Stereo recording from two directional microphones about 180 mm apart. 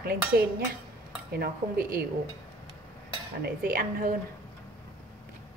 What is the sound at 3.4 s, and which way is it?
Speech, 55° right (ahead or behind).